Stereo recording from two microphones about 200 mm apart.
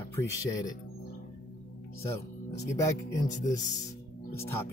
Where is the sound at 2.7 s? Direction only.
15° left (ahead or behind).